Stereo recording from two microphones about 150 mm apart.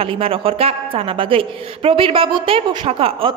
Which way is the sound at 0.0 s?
40° right (ahead or behind).